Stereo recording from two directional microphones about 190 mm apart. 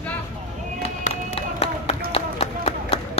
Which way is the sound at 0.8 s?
30° left (ahead or behind).